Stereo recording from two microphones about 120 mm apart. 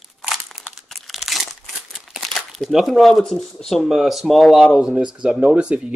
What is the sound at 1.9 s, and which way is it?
Speech, centre (ahead or behind).